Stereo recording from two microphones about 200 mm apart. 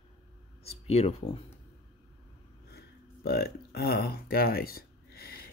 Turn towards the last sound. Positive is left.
turn(degrees=50)  # may be behind; listen again after turning